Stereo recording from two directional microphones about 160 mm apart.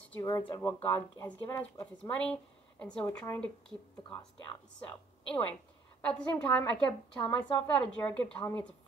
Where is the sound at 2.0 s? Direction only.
5° left (ahead or behind).